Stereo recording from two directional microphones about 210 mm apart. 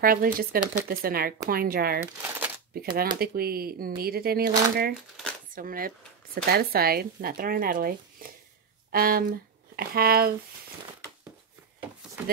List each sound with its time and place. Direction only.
0.0 s speech: 45° right (ahead or behind)